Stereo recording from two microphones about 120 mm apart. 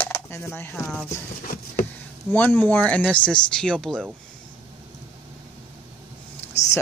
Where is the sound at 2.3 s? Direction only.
15° left (ahead or behind).